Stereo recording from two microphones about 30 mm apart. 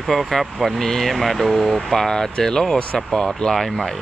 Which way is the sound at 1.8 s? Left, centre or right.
Centre.